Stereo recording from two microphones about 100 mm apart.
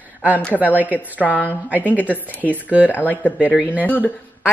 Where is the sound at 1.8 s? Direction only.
15° left (ahead or behind).